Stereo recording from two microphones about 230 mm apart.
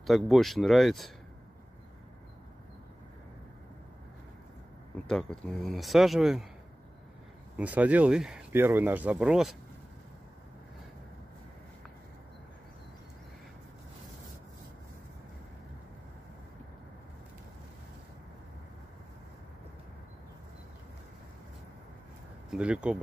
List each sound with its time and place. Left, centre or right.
0.0 s speech: centre
5.0 s speech: centre
7.5 s speech: centre
22.5 s speech: centre